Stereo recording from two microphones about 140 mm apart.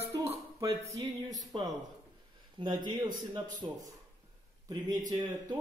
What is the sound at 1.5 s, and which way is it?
A man's voice, 40° right (ahead or behind).